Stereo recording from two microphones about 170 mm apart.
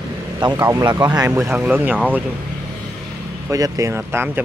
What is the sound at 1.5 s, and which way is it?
Speech, 5° right (ahead or behind).